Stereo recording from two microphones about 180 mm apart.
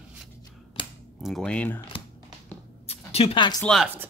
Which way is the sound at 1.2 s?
5° left (ahead or behind).